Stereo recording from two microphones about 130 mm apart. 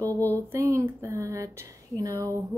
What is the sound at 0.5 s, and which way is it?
Speech, 20° right (ahead or behind).